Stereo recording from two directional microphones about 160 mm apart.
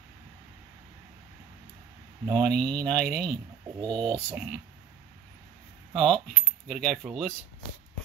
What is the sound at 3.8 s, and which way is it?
Speech, 25° right (ahead or behind).